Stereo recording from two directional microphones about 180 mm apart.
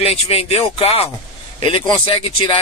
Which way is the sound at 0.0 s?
35° left (ahead or behind).